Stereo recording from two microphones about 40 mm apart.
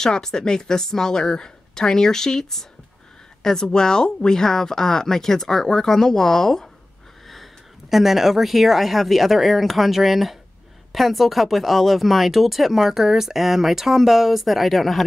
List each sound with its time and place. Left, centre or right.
0.0 s speech: centre
7.9 s speech: centre